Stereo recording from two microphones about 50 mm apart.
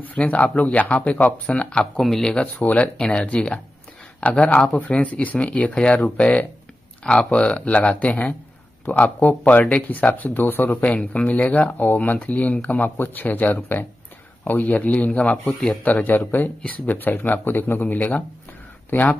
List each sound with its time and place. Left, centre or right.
0.0 s speech: left
2.0 s speech: centre
2.6 s speech: left
3.0 s speech: centre; by 10.8 s left
11.2 s speech: left
15.4 s speech: centre
15.8 s speech: left